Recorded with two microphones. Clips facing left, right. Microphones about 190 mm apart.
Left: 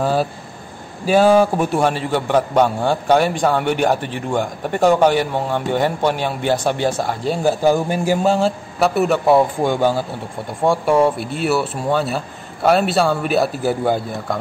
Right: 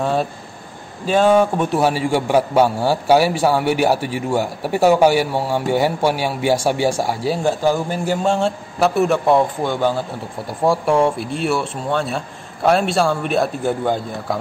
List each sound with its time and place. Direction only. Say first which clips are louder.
0.0 s a man's voice: left 1 dB; 5° left (ahead or behind)
1.8 s a man's voice: right 1 dB; 10° right (ahead or behind)
7.6 s a man's voice: left 2 dB; 15° left (ahead or behind)
10.6 s a man's voice: left 1 dB; centre (ahead or behind)